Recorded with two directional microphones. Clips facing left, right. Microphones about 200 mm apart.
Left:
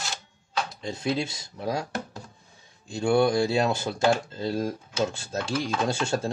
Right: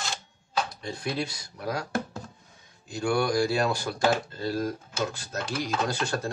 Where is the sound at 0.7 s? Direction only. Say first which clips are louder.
Left 4 dB; 25° left (ahead or behind).